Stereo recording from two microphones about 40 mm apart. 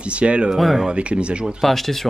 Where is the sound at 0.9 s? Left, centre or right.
Right.